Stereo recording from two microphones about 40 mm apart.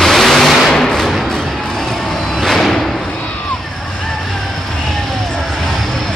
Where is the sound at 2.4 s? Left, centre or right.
Centre.